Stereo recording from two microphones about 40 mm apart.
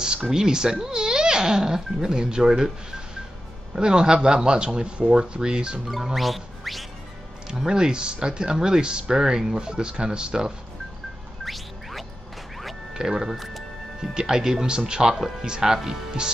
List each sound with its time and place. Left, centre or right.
0.0 s speech: right
3.7 s speech: centre
6.1 s music: centre
7.4 s speech: centre
11.4 s music: centre
12.9 s speech: centre
13.4 s music: centre
14.1 s speech: centre